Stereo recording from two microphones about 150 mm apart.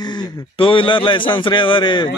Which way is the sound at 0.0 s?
30° left (ahead or behind).